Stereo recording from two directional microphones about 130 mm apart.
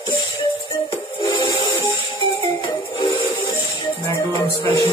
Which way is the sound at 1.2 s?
35° left (ahead or behind).